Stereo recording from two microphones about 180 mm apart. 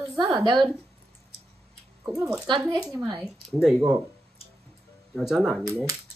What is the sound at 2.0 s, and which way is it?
Speech, 15° right (ahead or behind).